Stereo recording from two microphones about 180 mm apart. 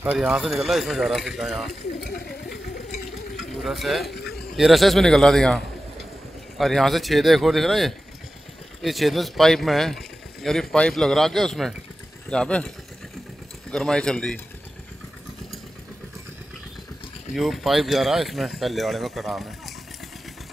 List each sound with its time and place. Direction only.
0.0 s speech: 5° right (ahead or behind)
2.0 s speech: 60° left (ahead or behind)
3.1 s a sound: centre (ahead or behind)
4.2 s a man's voice: centre (ahead or behind)
17.3 s speech: centre (ahead or behind)